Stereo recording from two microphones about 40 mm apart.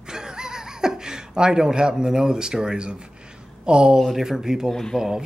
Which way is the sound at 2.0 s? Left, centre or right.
Centre.